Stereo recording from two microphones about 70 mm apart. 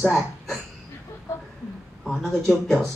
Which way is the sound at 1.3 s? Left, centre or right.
Left.